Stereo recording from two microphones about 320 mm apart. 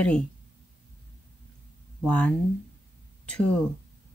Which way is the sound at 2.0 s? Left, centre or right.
Centre.